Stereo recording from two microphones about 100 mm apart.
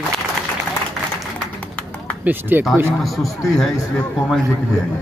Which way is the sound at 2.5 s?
20° right (ahead or behind).